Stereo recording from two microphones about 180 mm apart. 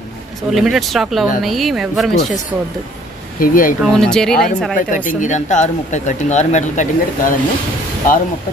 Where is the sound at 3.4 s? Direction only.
50° left (ahead or behind).